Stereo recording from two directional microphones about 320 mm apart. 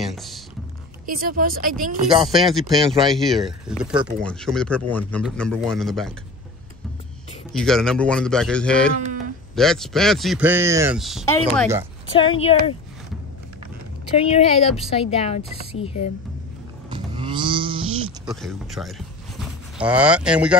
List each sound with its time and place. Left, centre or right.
0.0 s music: centre
1.0 s speech: right
2.2 s a man's voice: centre
7.5 s a man's voice: centre
12.2 s speech: centre
14.1 s a woman's voice: centre
16.9 s a sound: centre
18.2 s a man's voice: centre